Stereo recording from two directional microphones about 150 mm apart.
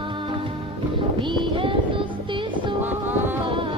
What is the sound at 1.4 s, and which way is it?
Child singing, 35° right (ahead or behind).